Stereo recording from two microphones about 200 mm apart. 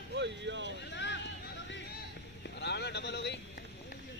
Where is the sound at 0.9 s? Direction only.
60° left (ahead or behind).